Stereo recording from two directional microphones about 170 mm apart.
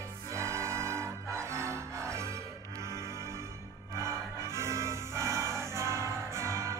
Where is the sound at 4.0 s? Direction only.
15° right (ahead or behind).